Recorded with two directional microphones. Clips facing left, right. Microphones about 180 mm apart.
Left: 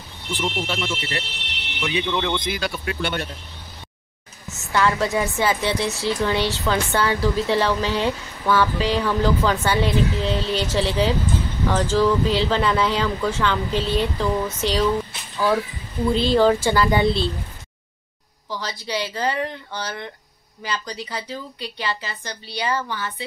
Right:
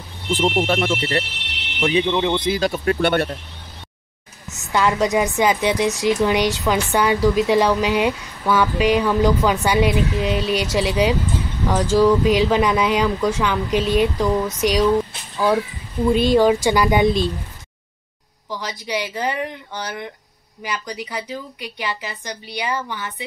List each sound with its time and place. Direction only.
0.7 s speech: 55° right (ahead or behind)
1.8 s speech: 40° right (ahead or behind)
2.0 s speech: 25° right (ahead or behind); by 3.1 s 45° right (ahead or behind)
4.5 s a woman's voice: 15° right (ahead or behind)
18.5 s a woman's voice: 15° right (ahead or behind)